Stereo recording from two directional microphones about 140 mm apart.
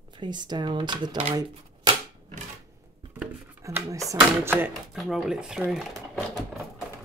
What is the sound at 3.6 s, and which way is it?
Speech, 20° right (ahead or behind).